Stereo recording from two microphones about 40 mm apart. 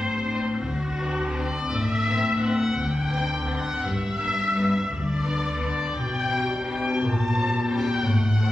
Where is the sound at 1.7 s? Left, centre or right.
Centre.